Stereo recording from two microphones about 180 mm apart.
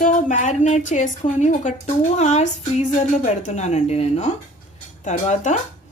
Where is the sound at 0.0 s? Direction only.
45° left (ahead or behind).